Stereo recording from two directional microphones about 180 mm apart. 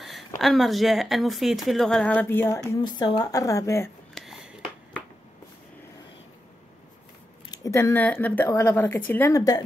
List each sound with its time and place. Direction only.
0.4 s speech: centre (ahead or behind)
2.7 s a woman's voice: 25° left (ahead or behind)
4.1 s a sound: centre (ahead or behind)
7.5 s speech: 15° left (ahead or behind)